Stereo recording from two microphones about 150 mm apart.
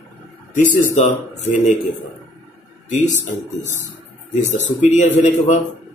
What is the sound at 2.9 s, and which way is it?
Speech, 55° left (ahead or behind).